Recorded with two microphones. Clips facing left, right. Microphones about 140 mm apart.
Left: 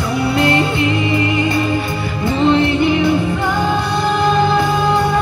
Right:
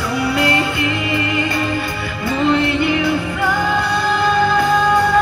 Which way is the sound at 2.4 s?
25° left (ahead or behind).